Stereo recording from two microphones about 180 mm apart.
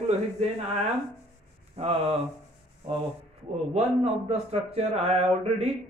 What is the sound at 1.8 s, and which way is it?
Speech, 35° right (ahead or behind).